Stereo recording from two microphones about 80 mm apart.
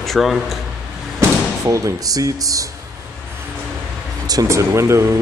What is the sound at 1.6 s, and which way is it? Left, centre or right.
Speech, right.